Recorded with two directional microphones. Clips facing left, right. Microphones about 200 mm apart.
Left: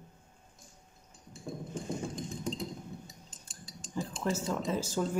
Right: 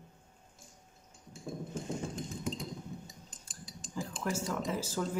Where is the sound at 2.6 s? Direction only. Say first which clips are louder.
Left 2 dB; 15° right (ahead or behind).